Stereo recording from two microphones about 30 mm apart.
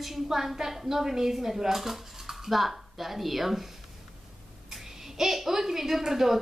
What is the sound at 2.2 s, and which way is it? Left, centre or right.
Dishes, centre.